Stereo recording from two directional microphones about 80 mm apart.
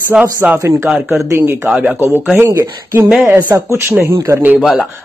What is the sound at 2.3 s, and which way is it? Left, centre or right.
Speech, right.